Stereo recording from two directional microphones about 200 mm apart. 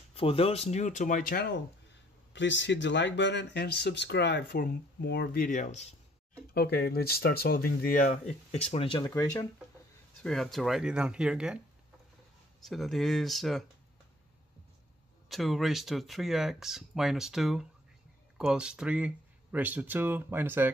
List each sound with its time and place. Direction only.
0.1 s speech: 30° left (ahead or behind); by 1.6 s 50° left (ahead or behind)
2.3 s speech: 65° left (ahead or behind); by 5.9 s 35° left (ahead or behind)
6.5 s speech: 50° left (ahead or behind); by 8.5 s 35° left (ahead or behind)
8.7 s speech: 20° left (ahead or behind)
10.2 s speech: centre (ahead or behind)
12.6 s speech: centre (ahead or behind)
15.2 s speech: centre (ahead or behind)